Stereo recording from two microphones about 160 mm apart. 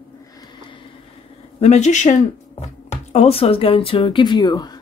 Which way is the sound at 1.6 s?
45° left (ahead or behind).